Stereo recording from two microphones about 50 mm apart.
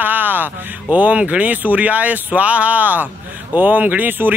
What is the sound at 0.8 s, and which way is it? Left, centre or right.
Speech, right.